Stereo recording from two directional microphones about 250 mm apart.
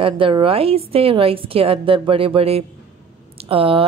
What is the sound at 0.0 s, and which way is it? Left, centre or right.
A woman's voice, right.